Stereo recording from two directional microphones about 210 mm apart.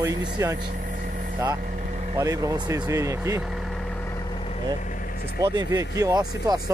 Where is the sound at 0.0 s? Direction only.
15° right (ahead or behind).